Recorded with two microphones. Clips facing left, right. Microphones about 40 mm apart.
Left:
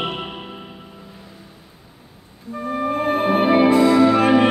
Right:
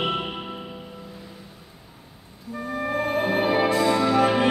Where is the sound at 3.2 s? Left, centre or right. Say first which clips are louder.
Left 7 dB; left.